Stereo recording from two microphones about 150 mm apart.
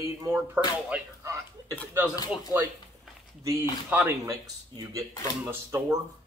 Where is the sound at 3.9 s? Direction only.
15° right (ahead or behind).